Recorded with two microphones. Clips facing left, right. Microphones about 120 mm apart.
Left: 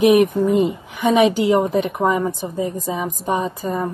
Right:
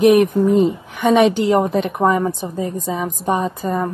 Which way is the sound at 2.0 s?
5° left (ahead or behind).